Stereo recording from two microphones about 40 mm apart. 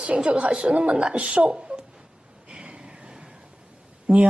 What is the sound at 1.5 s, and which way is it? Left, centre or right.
Speech, right.